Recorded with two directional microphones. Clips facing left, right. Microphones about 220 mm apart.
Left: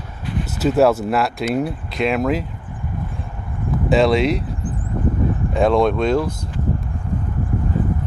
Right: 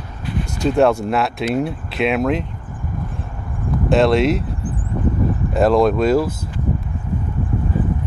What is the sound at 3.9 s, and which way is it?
Speech, centre (ahead or behind).